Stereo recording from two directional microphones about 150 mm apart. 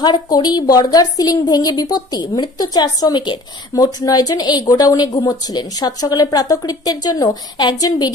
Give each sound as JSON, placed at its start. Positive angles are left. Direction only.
{"t": 0.0, "sound": "speech", "side_deg": 30}